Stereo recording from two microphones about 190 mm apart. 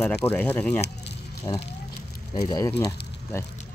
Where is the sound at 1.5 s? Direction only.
15° left (ahead or behind).